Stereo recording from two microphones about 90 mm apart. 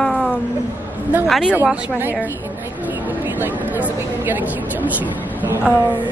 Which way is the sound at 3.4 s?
20° right (ahead or behind).